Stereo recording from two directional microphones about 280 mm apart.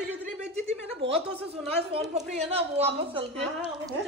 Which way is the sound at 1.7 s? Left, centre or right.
Right.